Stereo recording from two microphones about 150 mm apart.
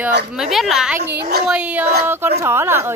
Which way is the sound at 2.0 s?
15° right (ahead or behind).